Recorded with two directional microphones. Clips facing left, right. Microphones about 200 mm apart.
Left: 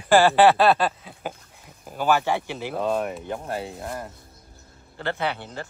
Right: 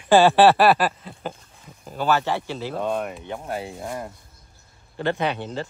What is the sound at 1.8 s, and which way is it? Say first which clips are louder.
Speech: even; 10° left (ahead or behind).